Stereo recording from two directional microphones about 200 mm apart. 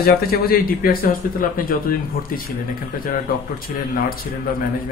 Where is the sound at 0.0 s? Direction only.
50° left (ahead or behind).